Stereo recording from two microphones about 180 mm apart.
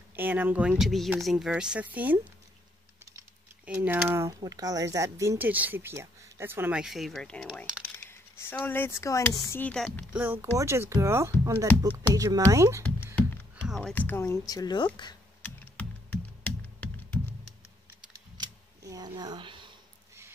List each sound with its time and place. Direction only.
0.1 s speech: 10° right (ahead or behind)
3.6 s speech: 10° right (ahead or behind)
7.6 s a sound: 5° right (ahead or behind)
8.1 s speech: 10° left (ahead or behind)
10.1 s speech: 10° right (ahead or behind)
12.8 s a sound: 10° left (ahead or behind)
13.6 s speech: centre (ahead or behind); by 14.9 s 20° left (ahead or behind)
15.4 s computer keyboard: 10° left (ahead or behind)
18.4 s a sound: 20° right (ahead or behind)